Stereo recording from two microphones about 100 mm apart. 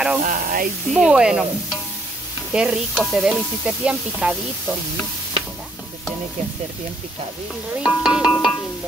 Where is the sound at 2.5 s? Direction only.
5° right (ahead or behind).